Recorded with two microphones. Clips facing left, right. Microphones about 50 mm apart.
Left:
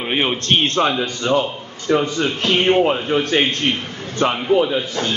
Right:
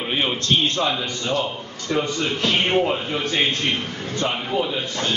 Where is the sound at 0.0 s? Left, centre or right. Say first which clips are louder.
Left 3 dB; left.